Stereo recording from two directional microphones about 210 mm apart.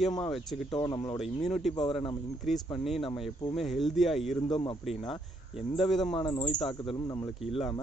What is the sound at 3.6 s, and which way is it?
Speech, centre (ahead or behind).